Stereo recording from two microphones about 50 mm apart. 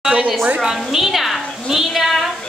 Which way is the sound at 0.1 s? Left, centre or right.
Right.